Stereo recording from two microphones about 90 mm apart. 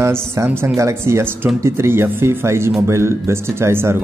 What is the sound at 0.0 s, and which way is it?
Speech, 30° right (ahead or behind).